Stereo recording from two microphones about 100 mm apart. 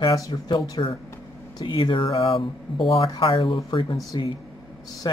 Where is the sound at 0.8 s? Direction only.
45° left (ahead or behind).